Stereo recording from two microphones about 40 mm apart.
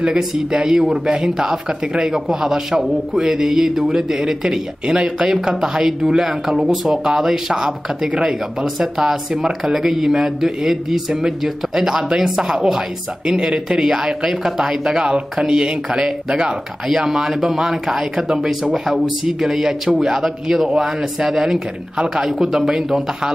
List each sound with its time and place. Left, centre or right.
0.2 s speech: centre